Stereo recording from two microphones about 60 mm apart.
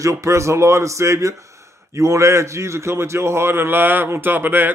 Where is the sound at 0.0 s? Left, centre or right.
Right.